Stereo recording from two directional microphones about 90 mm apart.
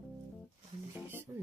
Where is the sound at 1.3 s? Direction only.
30° right (ahead or behind).